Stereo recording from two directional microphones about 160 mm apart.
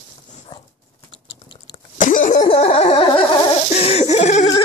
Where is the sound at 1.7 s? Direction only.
55° left (ahead or behind).